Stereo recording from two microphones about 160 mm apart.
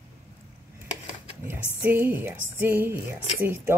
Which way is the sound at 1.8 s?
15° right (ahead or behind).